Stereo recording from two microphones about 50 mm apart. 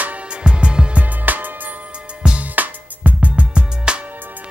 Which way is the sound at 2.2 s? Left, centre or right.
Right.